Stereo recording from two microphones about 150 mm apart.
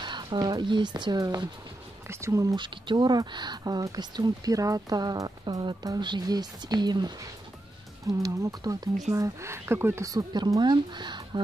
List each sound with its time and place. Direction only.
0.0 s speech: 30° right (ahead or behind)
8.2 s speech: 25° right (ahead or behind)